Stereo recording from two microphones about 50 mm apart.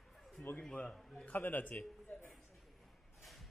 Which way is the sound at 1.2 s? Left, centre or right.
Left.